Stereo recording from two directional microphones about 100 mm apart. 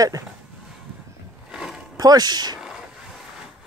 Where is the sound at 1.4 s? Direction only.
5° right (ahead or behind).